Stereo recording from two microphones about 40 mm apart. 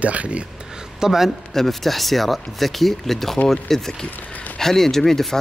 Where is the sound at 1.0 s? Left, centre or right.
Centre.